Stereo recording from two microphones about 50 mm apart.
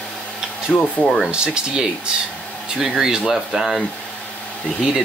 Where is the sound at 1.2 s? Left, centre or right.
Centre.